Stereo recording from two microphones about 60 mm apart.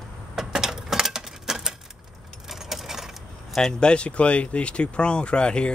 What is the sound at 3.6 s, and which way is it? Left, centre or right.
Speech, centre.